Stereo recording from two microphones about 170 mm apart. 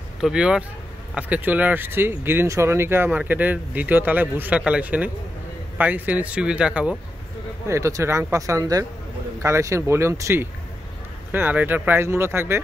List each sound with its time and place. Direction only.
0.2 s speech: 5° right (ahead or behind)
7.6 s speech: 15° right (ahead or behind)